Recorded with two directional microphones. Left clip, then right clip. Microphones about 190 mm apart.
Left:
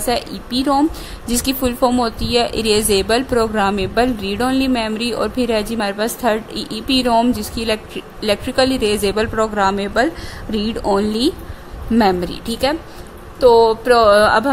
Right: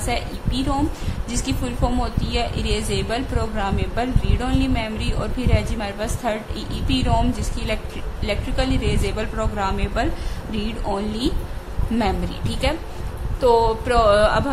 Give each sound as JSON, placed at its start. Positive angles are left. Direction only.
{"t": 0.0, "sound": "a woman's voice", "side_deg": 45}